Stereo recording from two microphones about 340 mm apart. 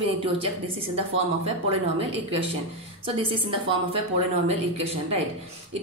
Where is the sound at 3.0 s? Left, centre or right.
Centre.